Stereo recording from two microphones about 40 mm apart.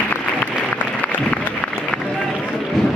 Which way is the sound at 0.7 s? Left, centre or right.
Left.